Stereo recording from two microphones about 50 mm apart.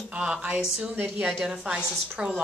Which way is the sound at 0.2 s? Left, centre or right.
Centre.